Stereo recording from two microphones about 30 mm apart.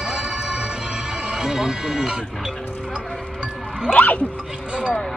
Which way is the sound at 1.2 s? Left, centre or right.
Centre.